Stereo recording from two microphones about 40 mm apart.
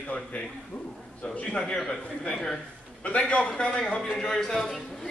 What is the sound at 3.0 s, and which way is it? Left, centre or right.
A man's voice, left.